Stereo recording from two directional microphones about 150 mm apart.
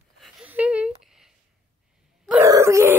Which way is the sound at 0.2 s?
10° right (ahead or behind).